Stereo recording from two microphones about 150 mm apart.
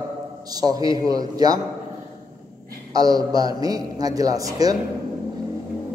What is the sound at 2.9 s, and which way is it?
A man's voice, 25° right (ahead or behind).